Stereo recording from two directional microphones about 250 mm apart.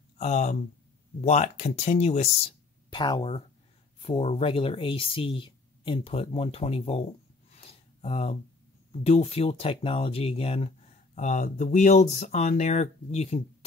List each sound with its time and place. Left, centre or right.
0.2 s speech: left
7.5 s a sound: left
9.0 s speech: left